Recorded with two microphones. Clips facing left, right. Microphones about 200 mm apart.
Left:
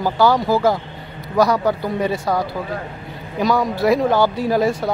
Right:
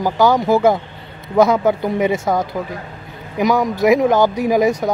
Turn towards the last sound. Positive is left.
turn(degrees=-15)  # may be behind; listen again after turning